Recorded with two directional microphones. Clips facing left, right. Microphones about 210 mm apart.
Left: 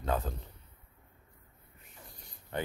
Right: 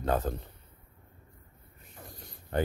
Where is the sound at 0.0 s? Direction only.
45° right (ahead or behind).